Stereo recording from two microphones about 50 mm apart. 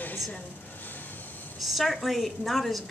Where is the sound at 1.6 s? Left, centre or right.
Centre.